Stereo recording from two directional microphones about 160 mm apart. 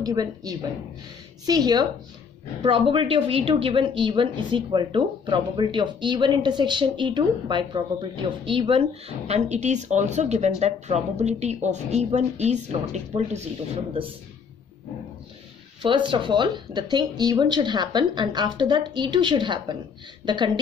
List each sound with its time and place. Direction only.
0.0 s a woman's voice: 25° right (ahead or behind)
9.3 s a woman's voice: 45° right (ahead or behind)
15.8 s a woman's voice: 30° right (ahead or behind)